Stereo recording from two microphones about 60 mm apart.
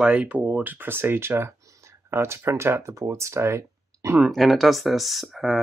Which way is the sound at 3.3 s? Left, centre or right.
Right.